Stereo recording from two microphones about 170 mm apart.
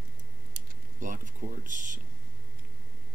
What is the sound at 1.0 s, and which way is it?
Speech, 50° right (ahead or behind).